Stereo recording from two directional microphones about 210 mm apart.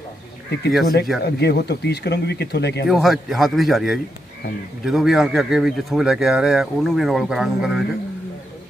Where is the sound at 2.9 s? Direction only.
Centre (ahead or behind).